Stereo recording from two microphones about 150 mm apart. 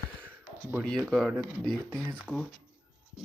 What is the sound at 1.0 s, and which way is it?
Speech, centre (ahead or behind).